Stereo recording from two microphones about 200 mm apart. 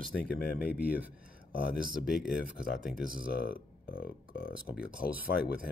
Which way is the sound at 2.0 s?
5° right (ahead or behind).